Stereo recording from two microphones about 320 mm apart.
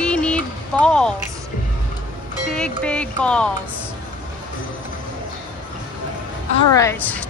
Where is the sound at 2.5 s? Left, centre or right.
Centre.